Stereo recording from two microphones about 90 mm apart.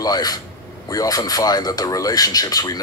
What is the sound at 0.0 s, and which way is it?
A man's voice, 45° left (ahead or behind).